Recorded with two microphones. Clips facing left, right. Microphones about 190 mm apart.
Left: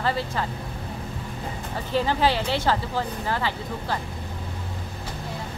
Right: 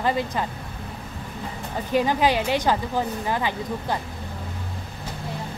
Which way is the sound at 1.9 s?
15° right (ahead or behind).